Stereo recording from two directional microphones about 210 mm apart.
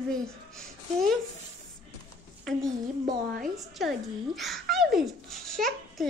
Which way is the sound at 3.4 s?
Centre (ahead or behind).